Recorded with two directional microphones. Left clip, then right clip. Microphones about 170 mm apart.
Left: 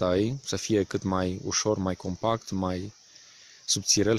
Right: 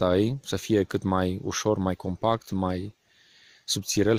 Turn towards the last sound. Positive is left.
turn(degrees=-20)  # may be behind; listen again after turning